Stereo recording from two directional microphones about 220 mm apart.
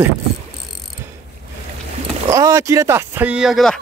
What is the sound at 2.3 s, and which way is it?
Speech, 15° right (ahead or behind).